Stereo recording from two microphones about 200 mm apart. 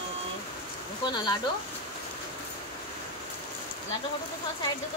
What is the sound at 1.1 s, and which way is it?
Speech, 20° left (ahead or behind).